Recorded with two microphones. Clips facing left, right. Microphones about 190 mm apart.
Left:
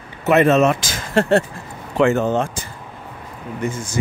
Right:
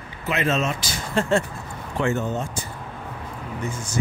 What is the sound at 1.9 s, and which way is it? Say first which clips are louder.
Speech: left 8 dB; 90° left.